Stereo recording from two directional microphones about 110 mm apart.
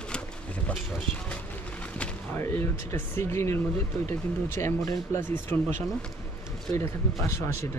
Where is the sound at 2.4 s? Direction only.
20° left (ahead or behind).